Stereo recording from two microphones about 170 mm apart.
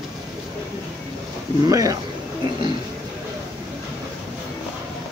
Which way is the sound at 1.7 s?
20° right (ahead or behind).